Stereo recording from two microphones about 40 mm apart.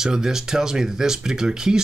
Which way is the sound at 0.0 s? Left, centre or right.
Centre.